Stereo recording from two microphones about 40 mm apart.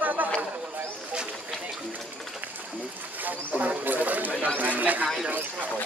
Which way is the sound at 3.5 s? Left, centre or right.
Right.